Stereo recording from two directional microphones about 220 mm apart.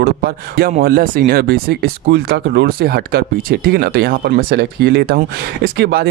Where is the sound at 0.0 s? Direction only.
45° right (ahead or behind).